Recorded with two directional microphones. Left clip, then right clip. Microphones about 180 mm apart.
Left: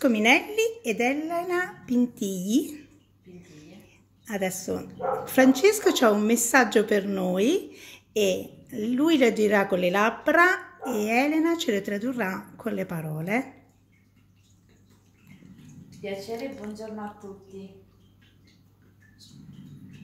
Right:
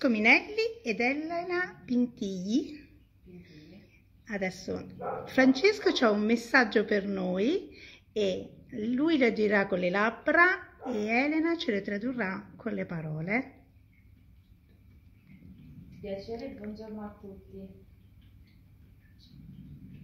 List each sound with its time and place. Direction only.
0.0 s speech: 15° left (ahead or behind)
2.1 s a woman's voice: 50° left (ahead or behind)
2.6 s speech: 20° left (ahead or behind)
4.3 s a woman's voice: 20° left (ahead or behind)
16.0 s speech: 15° left (ahead or behind)